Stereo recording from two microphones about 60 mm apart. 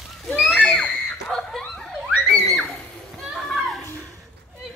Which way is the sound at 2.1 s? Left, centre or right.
Centre.